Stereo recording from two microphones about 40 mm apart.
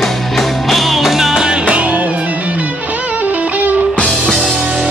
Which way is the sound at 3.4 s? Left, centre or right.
Right.